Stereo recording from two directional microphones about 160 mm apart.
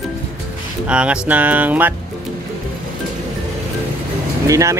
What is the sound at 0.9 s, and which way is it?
Speech, 5° right (ahead or behind).